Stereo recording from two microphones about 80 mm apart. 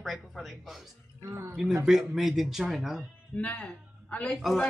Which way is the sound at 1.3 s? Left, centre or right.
Right.